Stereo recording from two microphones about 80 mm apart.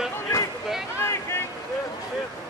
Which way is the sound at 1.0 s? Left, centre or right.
Left.